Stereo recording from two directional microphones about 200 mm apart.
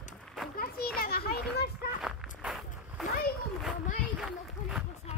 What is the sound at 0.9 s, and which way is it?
Children playing, 50° left (ahead or behind).